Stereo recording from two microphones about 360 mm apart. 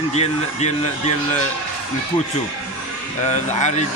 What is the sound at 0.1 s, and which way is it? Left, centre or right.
A man's voice, centre.